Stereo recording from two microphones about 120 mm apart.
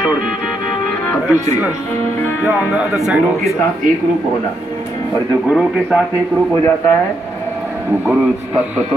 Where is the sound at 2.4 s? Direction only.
15° right (ahead or behind).